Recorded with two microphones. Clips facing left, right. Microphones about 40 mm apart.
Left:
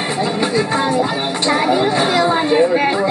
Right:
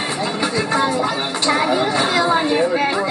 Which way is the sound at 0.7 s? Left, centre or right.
Left.